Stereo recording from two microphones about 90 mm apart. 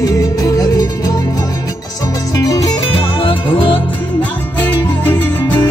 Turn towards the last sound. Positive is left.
turn(degrees=20)  # may be behind; listen again after turning